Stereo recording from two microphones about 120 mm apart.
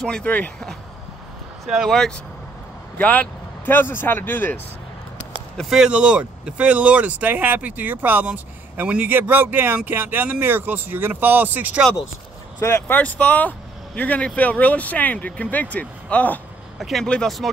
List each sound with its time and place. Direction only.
0.0 s speech: 5° left (ahead or behind)
3.0 s speech: 15° left (ahead or behind)
5.6 s speech: 5° right (ahead or behind)
12.5 s speech: 20° left (ahead or behind)
16.7 s speech: centre (ahead or behind)